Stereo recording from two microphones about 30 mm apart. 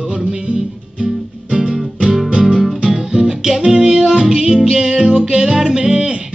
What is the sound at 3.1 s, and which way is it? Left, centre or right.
Music, centre.